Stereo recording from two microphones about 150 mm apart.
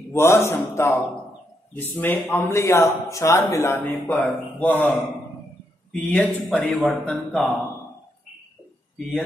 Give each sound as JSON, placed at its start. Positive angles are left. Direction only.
{"t": 0.1, "sound": "a man's voice", "side_deg": 15}